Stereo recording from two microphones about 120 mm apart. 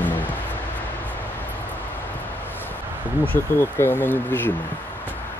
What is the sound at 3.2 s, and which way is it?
Speech, 20° left (ahead or behind).